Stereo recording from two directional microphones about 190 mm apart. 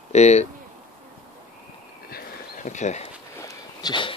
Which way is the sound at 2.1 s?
45° left (ahead or behind).